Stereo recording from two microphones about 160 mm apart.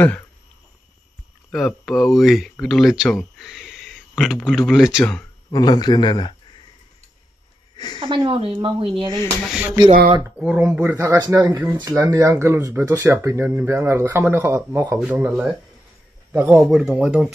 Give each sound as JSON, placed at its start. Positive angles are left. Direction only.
{"t": 1.5, "sound": "speech", "side_deg": 0}
{"t": 5.5, "sound": "speech", "side_deg": 25}
{"t": 7.7, "sound": "a sound", "side_deg": 25}
{"t": 8.0, "sound": "speech", "side_deg": -35}
{"t": 9.4, "sound": "speech", "side_deg": -5}
{"t": 11.0, "sound": "a man's voice", "side_deg": -20}